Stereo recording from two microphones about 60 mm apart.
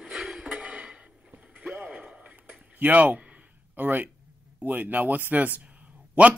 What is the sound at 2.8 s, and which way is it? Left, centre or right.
Speech, right.